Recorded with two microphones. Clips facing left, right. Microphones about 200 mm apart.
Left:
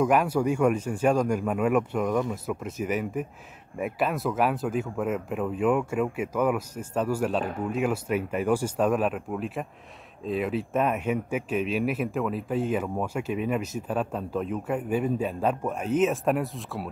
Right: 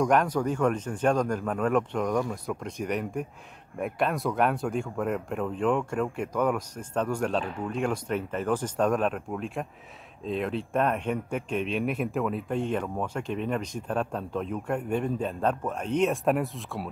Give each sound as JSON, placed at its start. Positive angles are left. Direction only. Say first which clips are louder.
{"t": 0.0, "sound": "speech", "louder": "left 1 dB", "side_deg": 5}